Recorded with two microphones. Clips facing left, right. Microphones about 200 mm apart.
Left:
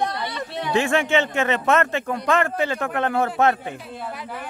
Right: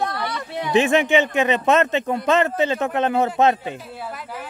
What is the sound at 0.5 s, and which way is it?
A man's voice, 15° right (ahead or behind).